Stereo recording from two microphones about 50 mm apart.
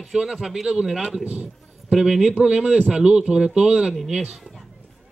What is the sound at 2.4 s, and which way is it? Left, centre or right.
A man's voice, right.